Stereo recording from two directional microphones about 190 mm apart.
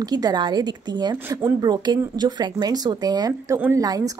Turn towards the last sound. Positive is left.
turn(degrees=-20)  # may be behind; listen again after turning